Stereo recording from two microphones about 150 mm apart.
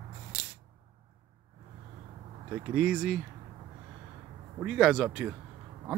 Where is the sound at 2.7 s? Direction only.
5° right (ahead or behind).